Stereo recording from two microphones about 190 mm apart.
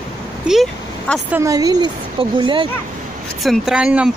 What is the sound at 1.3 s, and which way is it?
A woman's voice, 15° right (ahead or behind).